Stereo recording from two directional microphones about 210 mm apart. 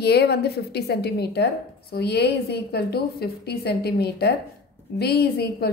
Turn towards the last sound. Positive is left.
turn(degrees=50)  # may be behind; listen again after turning